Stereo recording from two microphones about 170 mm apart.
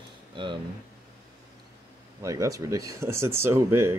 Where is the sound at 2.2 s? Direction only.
20° right (ahead or behind).